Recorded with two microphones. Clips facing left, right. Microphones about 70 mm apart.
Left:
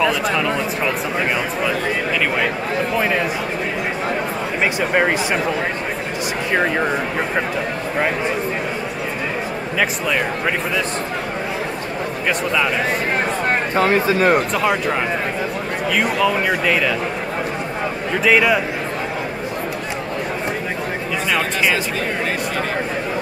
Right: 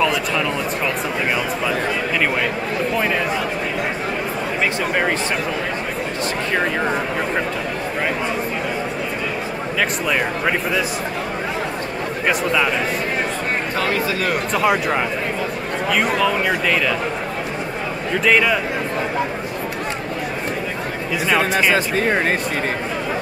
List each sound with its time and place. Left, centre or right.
0.0 s a sound: centre
9.8 s speech: centre
13.7 s speech: left
14.5 s speech: centre
18.2 s speech: centre